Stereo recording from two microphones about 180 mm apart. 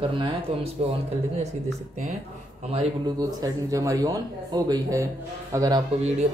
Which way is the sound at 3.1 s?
20° right (ahead or behind).